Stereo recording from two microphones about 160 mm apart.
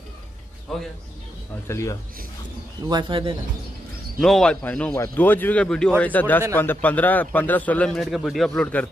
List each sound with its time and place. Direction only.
1.7 s a man's voice: 20° left (ahead or behind)
2.9 s speech: 30° right (ahead or behind)
4.2 s a man's voice: 5° left (ahead or behind)